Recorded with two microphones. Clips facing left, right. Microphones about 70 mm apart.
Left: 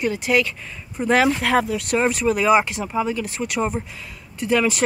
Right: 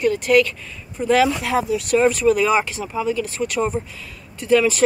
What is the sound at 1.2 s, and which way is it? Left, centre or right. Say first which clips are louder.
Speech: even; left.